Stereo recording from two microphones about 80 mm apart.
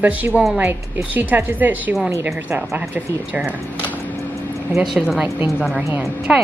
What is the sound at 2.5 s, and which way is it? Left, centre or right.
Speech, right.